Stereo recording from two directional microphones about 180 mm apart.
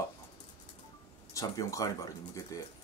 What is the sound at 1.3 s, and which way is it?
Speech, 20° left (ahead or behind).